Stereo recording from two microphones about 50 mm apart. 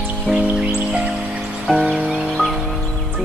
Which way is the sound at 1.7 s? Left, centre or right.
Right.